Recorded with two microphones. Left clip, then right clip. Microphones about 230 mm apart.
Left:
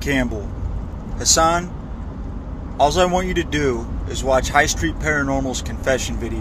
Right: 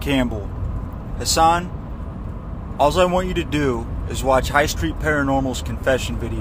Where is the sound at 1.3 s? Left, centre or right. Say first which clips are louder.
Right 1 dB; centre.